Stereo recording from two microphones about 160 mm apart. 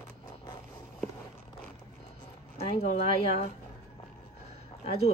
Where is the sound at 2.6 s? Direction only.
40° left (ahead or behind).